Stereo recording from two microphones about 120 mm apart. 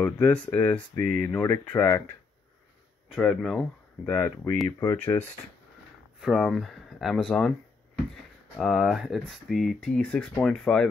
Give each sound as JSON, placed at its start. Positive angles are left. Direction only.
{"t": 0.0, "sound": "speech", "side_deg": 15}
{"t": 3.2, "sound": "speech", "side_deg": 5}
{"t": 6.2, "sound": "speech", "side_deg": 0}
{"t": 8.5, "sound": "speech", "side_deg": 0}